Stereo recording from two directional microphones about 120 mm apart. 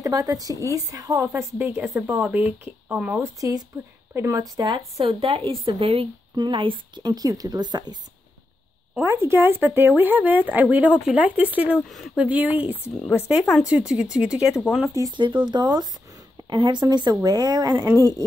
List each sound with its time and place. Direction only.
0.0 s speech: 30° right (ahead or behind); by 3.2 s 10° right (ahead or behind)
3.2 s speech: 25° right (ahead or behind)
5.0 s a woman's voice: 50° right (ahead or behind)
7.1 s speech: 30° right (ahead or behind)
9.0 s speech: 25° right (ahead or behind); by 14.6 s 5° right (ahead or behind)
15.1 s speech: 40° right (ahead or behind)